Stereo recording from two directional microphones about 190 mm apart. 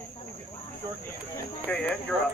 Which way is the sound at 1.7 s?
5° left (ahead or behind).